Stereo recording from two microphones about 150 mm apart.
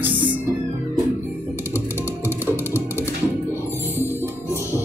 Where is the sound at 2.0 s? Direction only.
15° left (ahead or behind).